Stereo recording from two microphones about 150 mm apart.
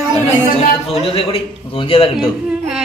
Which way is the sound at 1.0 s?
40° left (ahead or behind).